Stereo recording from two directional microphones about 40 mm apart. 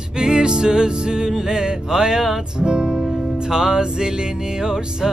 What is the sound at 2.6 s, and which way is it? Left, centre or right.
Speech, right.